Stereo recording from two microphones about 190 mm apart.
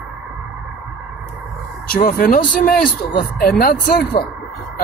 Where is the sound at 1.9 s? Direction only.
50° left (ahead or behind).